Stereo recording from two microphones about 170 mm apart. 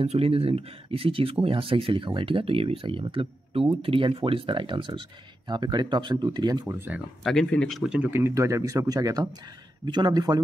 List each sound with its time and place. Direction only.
0.0 s speech: 35° right (ahead or behind); by 7.0 s 15° right (ahead or behind)
7.2 s speech: 5° left (ahead or behind); by 10.4 s 25° right (ahead or behind)